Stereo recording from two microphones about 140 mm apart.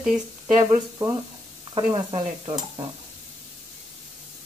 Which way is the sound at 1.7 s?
40° right (ahead or behind).